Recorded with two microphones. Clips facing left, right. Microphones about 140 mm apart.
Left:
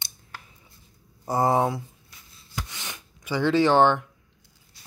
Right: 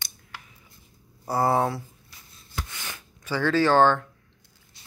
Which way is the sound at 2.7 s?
15° left (ahead or behind).